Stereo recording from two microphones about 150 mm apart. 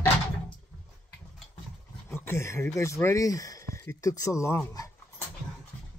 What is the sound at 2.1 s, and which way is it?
Speech, 15° left (ahead or behind).